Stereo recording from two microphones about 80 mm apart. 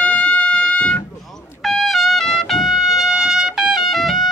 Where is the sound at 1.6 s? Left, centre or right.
Centre.